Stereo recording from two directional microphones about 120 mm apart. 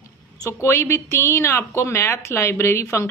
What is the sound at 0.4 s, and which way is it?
A woman's voice, 25° left (ahead or behind).